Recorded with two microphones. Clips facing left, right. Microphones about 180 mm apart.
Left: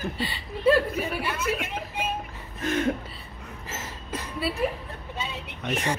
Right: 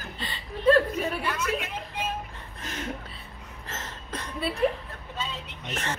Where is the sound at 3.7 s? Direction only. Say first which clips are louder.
Left 2 dB; 5° left (ahead or behind).